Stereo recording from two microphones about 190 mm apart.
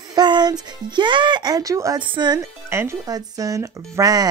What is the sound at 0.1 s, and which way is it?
Speech, 20° right (ahead or behind).